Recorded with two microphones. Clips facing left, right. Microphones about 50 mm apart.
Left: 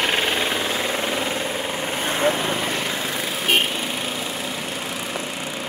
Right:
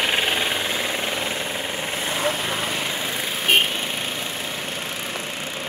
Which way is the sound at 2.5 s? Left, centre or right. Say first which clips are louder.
Left 2 dB; centre.